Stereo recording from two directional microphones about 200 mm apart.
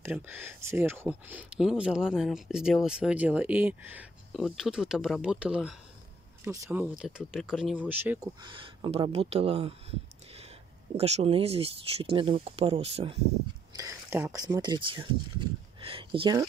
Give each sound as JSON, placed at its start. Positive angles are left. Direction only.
{"t": 0.0, "sound": "speech", "side_deg": -10}
{"t": 8.4, "sound": "speech", "side_deg": -25}
{"t": 13.7, "sound": "speech", "side_deg": -15}